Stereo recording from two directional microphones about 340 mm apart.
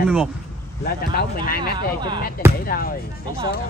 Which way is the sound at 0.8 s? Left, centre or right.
Left.